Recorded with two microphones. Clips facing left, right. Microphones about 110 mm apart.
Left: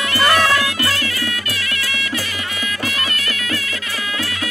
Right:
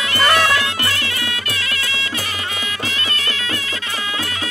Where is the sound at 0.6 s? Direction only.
25° right (ahead or behind).